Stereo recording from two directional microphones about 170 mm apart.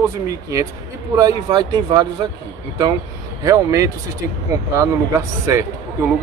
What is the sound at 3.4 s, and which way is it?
Speech, 20° right (ahead or behind).